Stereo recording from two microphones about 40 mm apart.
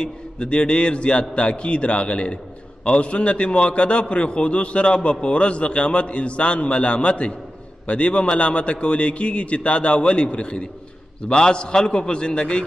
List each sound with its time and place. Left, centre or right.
0.0 s a man's voice: left